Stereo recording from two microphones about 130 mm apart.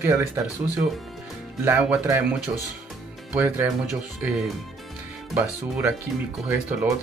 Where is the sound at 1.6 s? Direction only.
15° right (ahead or behind).